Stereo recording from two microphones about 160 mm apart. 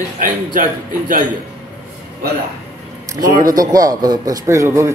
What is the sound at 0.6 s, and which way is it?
Speech, 60° right (ahead or behind).